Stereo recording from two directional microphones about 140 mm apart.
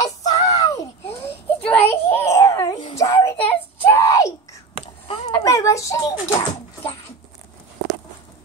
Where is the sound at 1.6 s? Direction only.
10° left (ahead or behind).